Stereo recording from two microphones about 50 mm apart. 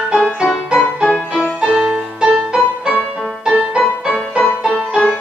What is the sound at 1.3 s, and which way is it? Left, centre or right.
Music, centre.